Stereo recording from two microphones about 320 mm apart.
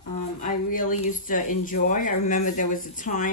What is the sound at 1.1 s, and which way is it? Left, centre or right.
Speech, left.